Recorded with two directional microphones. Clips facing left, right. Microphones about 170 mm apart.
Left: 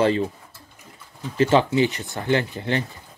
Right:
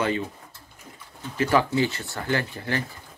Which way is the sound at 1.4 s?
25° left (ahead or behind).